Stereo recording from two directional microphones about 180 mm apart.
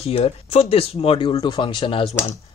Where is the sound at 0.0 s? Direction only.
35° left (ahead or behind).